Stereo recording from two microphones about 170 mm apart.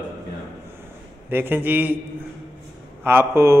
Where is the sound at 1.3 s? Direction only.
10° right (ahead or behind).